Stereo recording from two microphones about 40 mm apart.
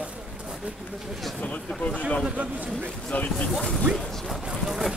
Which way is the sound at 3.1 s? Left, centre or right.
Left.